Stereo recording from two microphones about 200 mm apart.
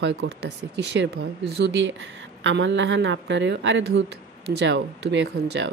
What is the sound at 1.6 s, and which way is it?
A woman's voice, 65° right (ahead or behind).